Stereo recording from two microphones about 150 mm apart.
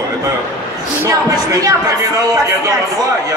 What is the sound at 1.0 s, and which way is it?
Speech, 20° right (ahead or behind).